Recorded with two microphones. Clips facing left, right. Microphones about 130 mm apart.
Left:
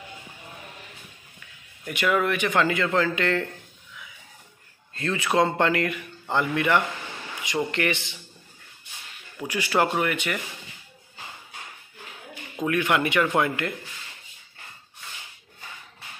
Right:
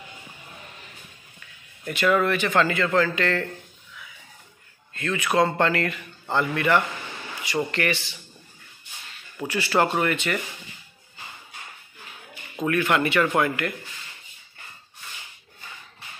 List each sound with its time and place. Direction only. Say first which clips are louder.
1.9 s a man's voice: right 2 dB; 10° left (ahead or behind)
4.9 s a man's voice: even; 30° left (ahead or behind)
9.5 s a man's voice: right 1 dB; 10° left (ahead or behind)
12.6 s a man's voice: right 1 dB; 15° left (ahead or behind)